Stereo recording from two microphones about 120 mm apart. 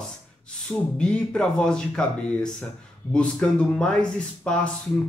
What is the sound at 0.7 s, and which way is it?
A man's voice, 10° left (ahead or behind).